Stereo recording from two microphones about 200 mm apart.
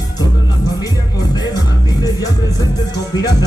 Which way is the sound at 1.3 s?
20° left (ahead or behind).